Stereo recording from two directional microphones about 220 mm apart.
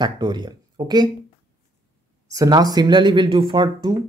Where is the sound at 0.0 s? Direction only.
20° right (ahead or behind).